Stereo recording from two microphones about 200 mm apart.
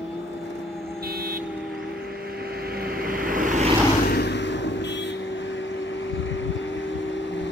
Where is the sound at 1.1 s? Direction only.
50° right (ahead or behind).